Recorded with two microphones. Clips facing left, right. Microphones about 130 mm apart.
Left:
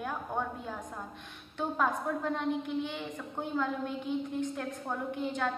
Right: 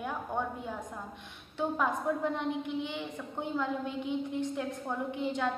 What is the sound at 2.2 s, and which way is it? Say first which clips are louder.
A woman's voice: even; 15° right (ahead or behind).